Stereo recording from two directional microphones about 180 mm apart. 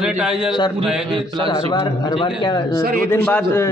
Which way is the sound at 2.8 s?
50° right (ahead or behind).